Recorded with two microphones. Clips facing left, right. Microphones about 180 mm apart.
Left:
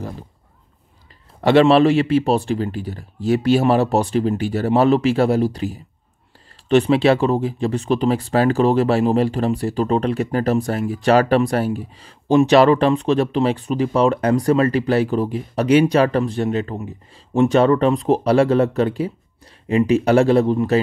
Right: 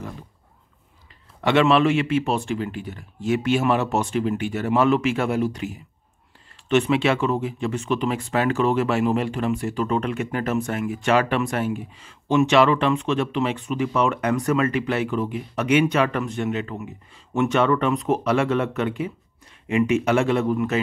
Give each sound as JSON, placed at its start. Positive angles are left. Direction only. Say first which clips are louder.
{"t": 1.4, "sound": "speech", "louder": "left 5 dB", "side_deg": 35}